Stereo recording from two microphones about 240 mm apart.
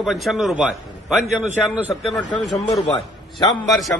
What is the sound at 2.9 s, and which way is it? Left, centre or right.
Speech, centre.